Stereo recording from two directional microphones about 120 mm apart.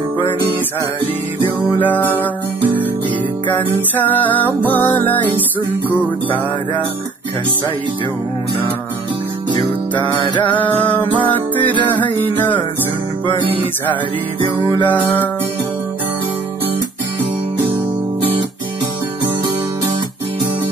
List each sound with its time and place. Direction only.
1.8 s music: 15° left (ahead or behind)
12.0 s music: 15° left (ahead or behind)
14.9 s music: 15° left (ahead or behind)